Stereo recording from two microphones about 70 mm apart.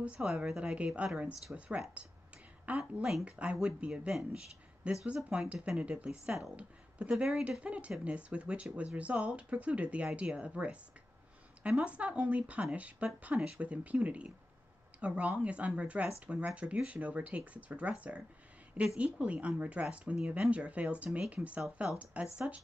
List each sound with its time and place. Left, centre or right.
0.2 s speech: centre
2.8 s speech: centre
3.3 s speech: centre
11.8 s speech: centre